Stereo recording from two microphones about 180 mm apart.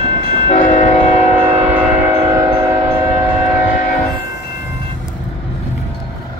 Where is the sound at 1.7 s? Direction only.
10° right (ahead or behind).